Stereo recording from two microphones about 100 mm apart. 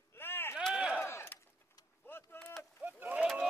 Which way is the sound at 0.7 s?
10° right (ahead or behind).